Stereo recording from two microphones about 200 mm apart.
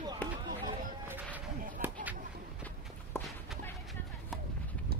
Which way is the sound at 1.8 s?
10° right (ahead or behind).